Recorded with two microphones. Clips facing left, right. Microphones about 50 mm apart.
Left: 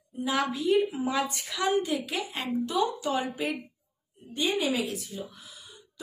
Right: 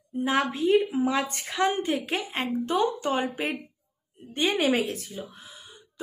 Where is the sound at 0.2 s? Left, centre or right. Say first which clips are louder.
Right 3 dB; right.